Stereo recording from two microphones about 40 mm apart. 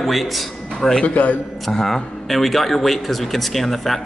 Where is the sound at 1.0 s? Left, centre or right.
Left.